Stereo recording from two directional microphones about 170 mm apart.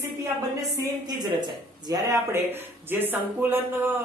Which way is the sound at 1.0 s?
25° right (ahead or behind).